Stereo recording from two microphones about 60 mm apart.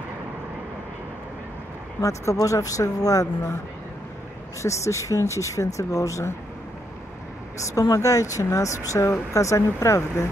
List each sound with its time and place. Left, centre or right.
2.0 s speech: left
4.6 s speech: left
7.7 s speech: left